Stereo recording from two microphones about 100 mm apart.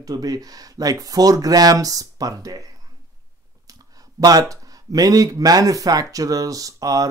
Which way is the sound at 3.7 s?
40° right (ahead or behind).